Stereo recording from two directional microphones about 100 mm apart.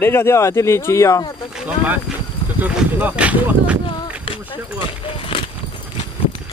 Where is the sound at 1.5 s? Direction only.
15° right (ahead or behind).